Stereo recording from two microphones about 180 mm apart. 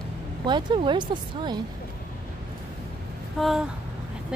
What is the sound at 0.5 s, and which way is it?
Speech, 25° right (ahead or behind).